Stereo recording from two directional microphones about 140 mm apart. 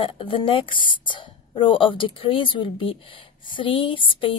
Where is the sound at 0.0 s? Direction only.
40° left (ahead or behind).